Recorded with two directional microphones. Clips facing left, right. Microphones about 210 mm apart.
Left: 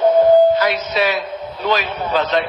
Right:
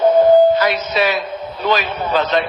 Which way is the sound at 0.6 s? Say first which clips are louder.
Right 1 dB; 50° right (ahead or behind).